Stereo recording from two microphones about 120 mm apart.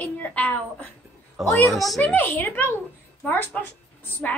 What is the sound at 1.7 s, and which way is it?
A woman's voice, centre (ahead or behind).